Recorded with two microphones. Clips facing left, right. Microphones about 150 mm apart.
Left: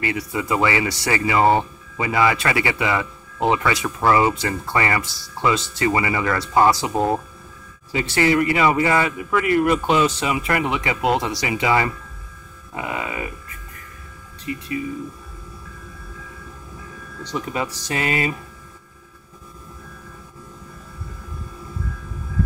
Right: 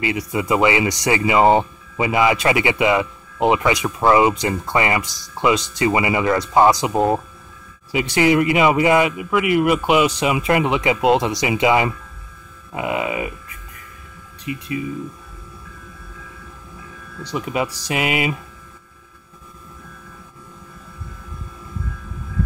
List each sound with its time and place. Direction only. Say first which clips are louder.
0.0 s speech: right 2 dB; 15° right (ahead or behind)
14.4 s speech: right 1 dB; 15° right (ahead or behind)
17.2 s speech: right 3 dB; 10° right (ahead or behind)